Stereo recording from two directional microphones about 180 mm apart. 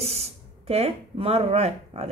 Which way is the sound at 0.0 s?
35° right (ahead or behind).